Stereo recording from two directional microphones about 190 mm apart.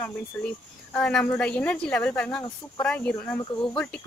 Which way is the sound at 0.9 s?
5° left (ahead or behind).